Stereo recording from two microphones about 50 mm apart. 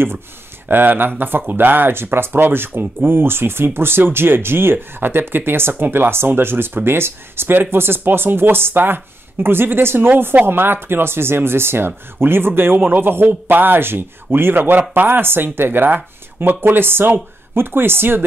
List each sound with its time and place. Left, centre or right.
0.7 s speech: right